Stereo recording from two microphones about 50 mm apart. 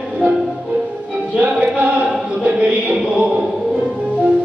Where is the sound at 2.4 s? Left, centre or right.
Right.